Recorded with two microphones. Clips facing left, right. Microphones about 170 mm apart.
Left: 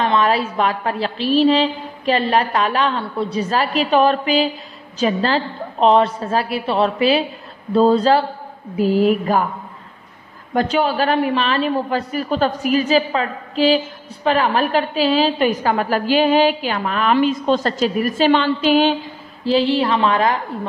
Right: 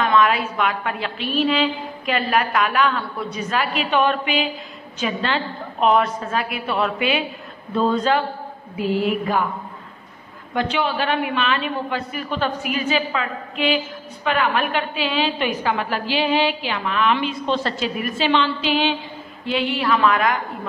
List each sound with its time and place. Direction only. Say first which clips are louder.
0.0 s a man's voice: left 1 dB; 35° left (ahead or behind)
10.5 s a man's voice: left 4 dB; 40° left (ahead or behind)
19.4 s a man's voice: left 6 dB; 30° left (ahead or behind)